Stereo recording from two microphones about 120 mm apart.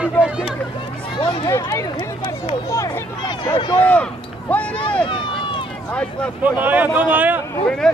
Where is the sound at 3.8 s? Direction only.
10° left (ahead or behind).